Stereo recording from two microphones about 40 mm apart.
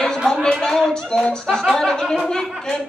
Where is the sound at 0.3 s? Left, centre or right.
Centre.